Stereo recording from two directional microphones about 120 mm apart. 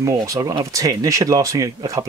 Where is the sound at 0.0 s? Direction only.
30° right (ahead or behind).